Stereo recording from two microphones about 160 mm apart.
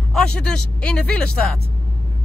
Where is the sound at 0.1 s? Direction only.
5° left (ahead or behind).